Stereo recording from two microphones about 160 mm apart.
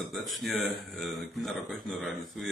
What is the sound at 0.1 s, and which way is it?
Speech, centre (ahead or behind).